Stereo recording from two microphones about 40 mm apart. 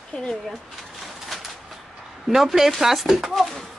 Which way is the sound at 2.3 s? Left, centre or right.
Centre.